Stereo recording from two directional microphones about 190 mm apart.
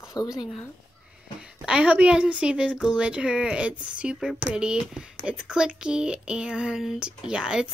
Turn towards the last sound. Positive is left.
turn(degrees=-5)  # may be behind; listen again after turning